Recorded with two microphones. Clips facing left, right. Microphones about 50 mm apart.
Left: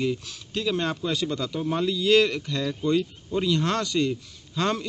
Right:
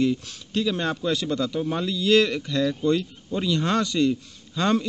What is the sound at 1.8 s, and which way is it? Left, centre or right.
Speech, centre.